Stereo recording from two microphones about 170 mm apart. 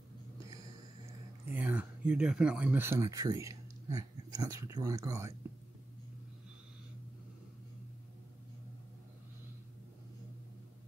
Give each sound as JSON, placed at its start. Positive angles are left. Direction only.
{"t": 1.5, "sound": "speech", "side_deg": -10}